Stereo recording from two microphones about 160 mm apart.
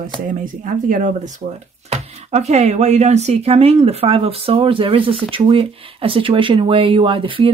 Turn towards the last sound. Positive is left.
turn(degrees=-35)  # may be behind; listen again after turning